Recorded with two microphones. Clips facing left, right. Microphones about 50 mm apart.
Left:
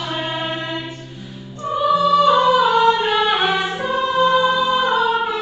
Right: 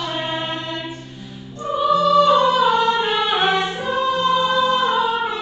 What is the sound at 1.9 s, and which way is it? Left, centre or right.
Music, centre.